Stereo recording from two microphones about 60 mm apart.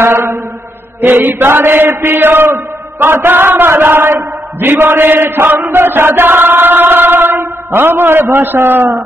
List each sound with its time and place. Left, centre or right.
0.0 s mantra: right
1.0 s chant: right